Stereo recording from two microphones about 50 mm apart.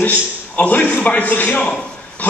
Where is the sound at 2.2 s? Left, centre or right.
Left.